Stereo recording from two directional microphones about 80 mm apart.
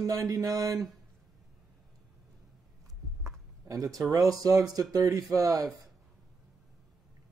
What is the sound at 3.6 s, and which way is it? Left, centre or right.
Speech, right.